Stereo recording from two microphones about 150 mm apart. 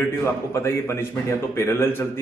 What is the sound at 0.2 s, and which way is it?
A man's voice, 20° left (ahead or behind).